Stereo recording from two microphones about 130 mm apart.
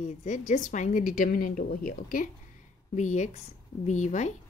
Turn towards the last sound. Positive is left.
turn(degrees=65)  # may be behind; listen again after turning